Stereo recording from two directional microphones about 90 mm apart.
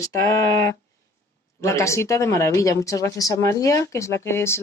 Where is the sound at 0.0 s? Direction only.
40° left (ahead or behind).